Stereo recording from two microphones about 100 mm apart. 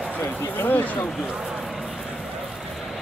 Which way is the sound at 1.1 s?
Centre (ahead or behind).